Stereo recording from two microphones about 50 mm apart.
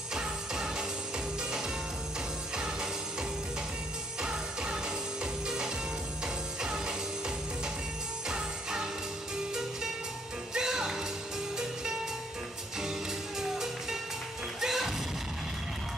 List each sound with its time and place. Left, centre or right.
0.1 s music: centre
2.5 s music: centre
8.3 s jingle bell: centre
10.5 s music: centre
13.4 s music: centre